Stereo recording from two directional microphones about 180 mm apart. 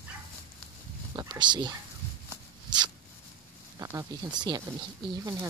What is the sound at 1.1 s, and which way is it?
Speech, 25° right (ahead or behind).